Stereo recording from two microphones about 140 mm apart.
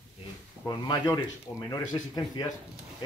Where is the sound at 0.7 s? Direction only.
30° left (ahead or behind).